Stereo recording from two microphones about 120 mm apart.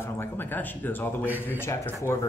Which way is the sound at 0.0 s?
20° left (ahead or behind).